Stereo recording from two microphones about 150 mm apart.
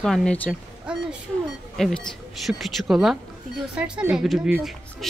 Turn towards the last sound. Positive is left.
turn(degrees=-5)  # may be behind; listen again after turning